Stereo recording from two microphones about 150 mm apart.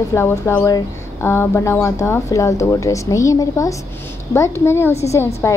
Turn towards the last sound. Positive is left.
turn(degrees=20)  # may be behind; listen again after turning